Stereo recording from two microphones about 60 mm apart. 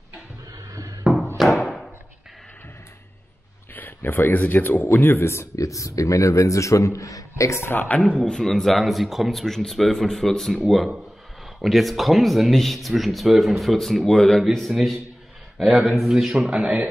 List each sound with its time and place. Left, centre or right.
0.5 s a sound: right
1.6 s a sound: centre
3.7 s speech: left
5.6 s a man's voice: left
7.7 s speech: left
8.0 s a man's voice: centre